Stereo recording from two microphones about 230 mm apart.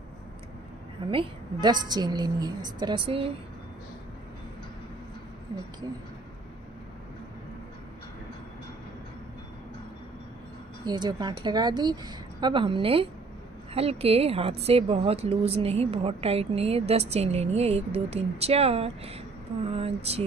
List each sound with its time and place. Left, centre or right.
1.1 s speech: right
10.9 s speech: centre